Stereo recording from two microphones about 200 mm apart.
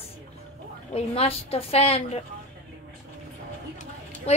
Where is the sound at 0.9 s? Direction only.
30° left (ahead or behind).